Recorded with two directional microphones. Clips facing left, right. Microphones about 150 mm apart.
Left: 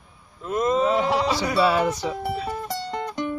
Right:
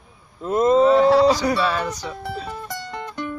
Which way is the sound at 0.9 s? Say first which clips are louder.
Right 7 dB; 15° left (ahead or behind).